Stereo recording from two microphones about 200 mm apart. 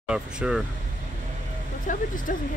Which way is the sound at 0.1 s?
5° right (ahead or behind).